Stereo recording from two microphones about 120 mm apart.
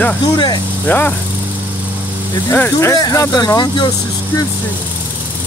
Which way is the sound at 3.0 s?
35° left (ahead or behind).